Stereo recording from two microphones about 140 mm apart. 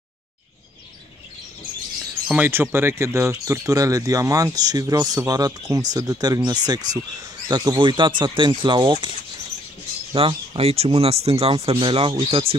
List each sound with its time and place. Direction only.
2.2 s speech: 10° right (ahead or behind); by 9.1 s 35° right (ahead or behind)
10.1 s speech: 40° right (ahead or behind)